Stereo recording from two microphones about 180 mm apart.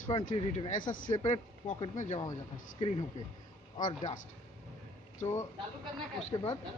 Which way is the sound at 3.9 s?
35° left (ahead or behind).